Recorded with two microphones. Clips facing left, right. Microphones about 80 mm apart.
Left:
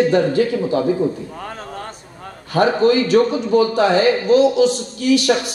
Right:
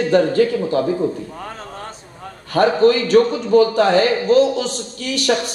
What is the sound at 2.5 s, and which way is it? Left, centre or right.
A man's voice, right.